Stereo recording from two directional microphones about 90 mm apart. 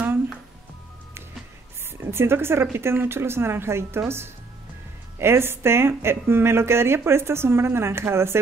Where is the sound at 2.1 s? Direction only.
25° right (ahead or behind).